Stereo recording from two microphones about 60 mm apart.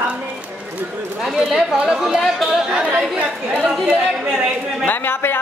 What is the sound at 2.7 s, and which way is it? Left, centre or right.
Speech, centre.